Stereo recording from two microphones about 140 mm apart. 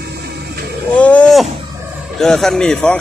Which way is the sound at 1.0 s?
5° left (ahead or behind).